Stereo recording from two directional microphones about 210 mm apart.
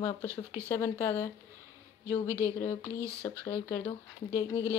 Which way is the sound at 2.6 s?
10° left (ahead or behind).